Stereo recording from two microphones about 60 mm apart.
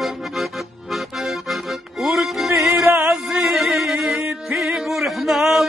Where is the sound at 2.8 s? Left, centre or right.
Right.